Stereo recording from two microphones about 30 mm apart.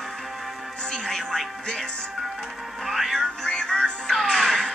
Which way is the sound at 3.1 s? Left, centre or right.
Centre.